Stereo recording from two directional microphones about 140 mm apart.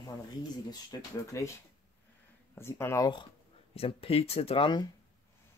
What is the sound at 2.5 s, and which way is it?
Speech, 15° left (ahead or behind).